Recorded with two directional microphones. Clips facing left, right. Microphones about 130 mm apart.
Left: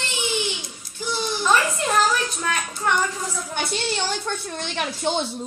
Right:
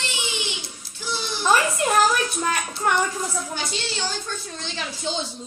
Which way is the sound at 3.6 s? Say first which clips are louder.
Left 4 dB; 60° left (ahead or behind).